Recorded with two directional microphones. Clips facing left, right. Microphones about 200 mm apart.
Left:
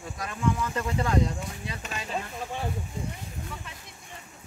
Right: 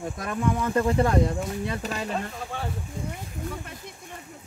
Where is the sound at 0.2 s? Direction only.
50° right (ahead or behind).